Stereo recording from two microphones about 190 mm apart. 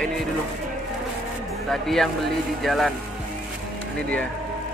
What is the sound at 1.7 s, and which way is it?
Speech, centre (ahead or behind).